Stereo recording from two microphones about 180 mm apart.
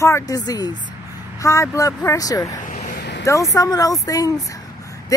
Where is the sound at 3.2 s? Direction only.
15° left (ahead or behind).